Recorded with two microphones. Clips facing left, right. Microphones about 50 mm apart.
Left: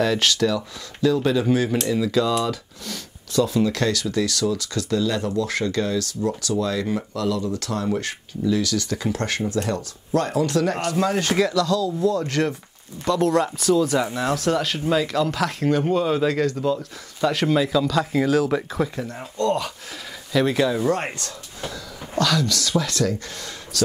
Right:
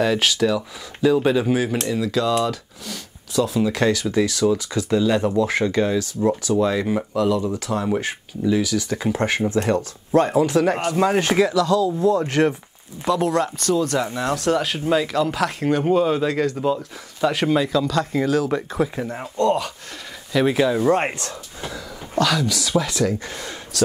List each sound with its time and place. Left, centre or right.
0.0 s speech: centre
3.7 s speech: centre
13.0 s speech: centre
18.9 s speech: centre
20.3 s speech: centre
20.9 s speech: right